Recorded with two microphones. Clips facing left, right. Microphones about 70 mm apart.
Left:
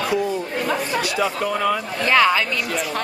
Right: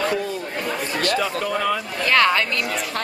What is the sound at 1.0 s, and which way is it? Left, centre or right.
Speech, centre.